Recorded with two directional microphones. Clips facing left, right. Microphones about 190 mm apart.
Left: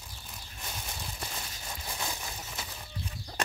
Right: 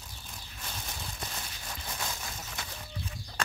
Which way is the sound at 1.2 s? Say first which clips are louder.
Even; 10° left (ahead or behind).